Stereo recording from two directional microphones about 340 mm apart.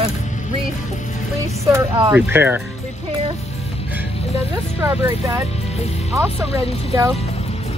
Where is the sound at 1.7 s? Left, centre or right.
Centre.